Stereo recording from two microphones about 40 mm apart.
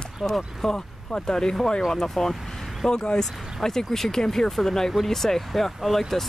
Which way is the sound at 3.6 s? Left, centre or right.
Centre.